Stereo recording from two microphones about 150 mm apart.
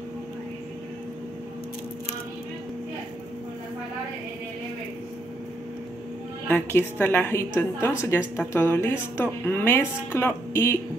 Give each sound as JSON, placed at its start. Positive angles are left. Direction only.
{"t": 6.5, "sound": "a woman's voice", "side_deg": 15}